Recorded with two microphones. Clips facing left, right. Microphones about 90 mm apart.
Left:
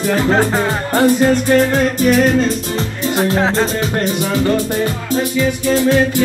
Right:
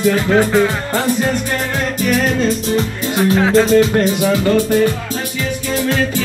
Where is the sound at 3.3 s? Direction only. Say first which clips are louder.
Right 4 dB; 35° left (ahead or behind).